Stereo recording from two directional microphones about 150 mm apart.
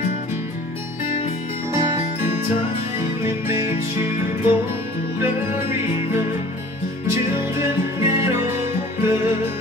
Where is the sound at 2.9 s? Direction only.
15° right (ahead or behind).